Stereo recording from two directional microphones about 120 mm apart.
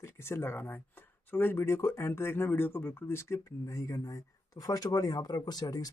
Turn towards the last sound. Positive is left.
turn(degrees=30)  # may be behind; listen again after turning